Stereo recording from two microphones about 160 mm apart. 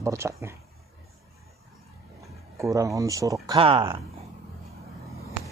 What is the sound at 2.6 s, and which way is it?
Speech, 20° right (ahead or behind).